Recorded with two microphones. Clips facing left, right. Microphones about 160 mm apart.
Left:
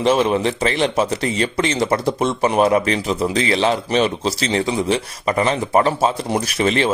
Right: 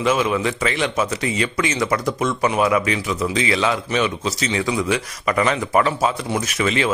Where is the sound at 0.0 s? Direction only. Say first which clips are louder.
Left 3 dB; 35° left (ahead or behind).